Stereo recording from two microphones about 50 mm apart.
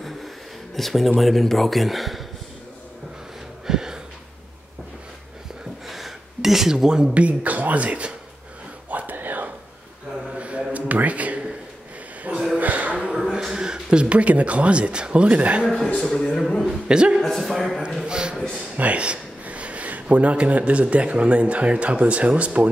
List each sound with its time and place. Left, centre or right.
0.7 s speech: centre
3.6 s a sound: centre
5.9 s gasp: centre
7.2 s speech: right
8.9 s whispering: right
10.3 s a sound: right
12.5 s a sound: right
12.9 s a sound: centre
13.2 s speech: centre; by 15.6 s right
16.0 s speech: centre
16.6 s a man's voice: centre
17.2 s speech: centre
18.0 s a man's voice: centre